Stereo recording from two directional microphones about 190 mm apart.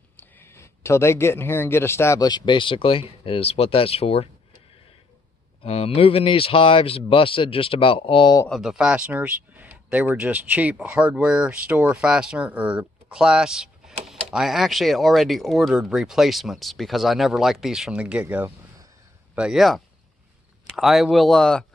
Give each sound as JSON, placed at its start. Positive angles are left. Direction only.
{"t": 0.2, "sound": "speech", "side_deg": 10}
{"t": 5.6, "sound": "speech", "side_deg": 30}
{"t": 8.5, "sound": "speech", "side_deg": 0}